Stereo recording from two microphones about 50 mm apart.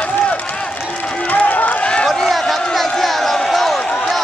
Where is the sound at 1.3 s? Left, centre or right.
Left.